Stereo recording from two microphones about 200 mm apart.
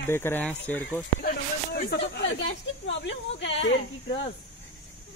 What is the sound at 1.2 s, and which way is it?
Speech, 50° left (ahead or behind).